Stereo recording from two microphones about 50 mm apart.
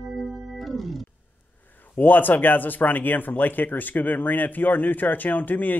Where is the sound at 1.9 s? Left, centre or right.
Left.